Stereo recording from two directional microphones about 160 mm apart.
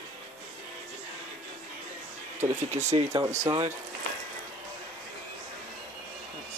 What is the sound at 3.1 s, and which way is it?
Speech, 20° right (ahead or behind).